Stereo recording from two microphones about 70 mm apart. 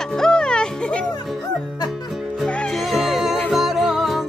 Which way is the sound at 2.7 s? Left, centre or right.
Centre.